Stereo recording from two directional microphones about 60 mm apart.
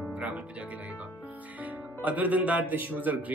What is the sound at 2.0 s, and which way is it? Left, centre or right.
Speech, right.